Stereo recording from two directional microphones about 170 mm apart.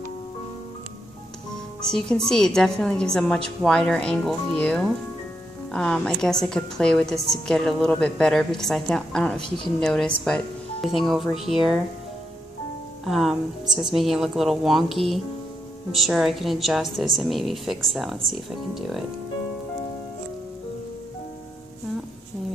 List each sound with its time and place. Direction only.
1.8 s a woman's voice: 5° left (ahead or behind)
13.1 s a woman's voice: centre (ahead or behind)